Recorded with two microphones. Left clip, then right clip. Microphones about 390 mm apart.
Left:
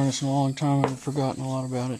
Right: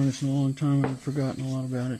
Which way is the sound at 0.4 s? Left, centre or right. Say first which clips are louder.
Left 4 dB; centre.